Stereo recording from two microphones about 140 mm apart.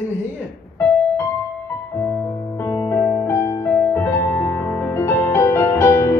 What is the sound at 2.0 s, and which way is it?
Music, 15° left (ahead or behind).